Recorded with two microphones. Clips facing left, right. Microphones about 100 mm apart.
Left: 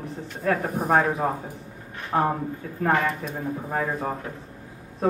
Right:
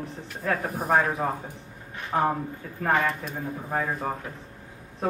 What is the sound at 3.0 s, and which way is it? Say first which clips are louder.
Speech: left 2 dB; centre (ahead or behind).